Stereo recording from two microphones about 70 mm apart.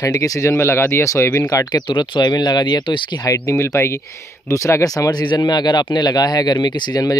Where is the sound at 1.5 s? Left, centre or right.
Left.